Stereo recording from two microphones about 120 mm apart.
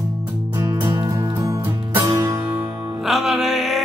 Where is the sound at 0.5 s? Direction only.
25° right (ahead or behind).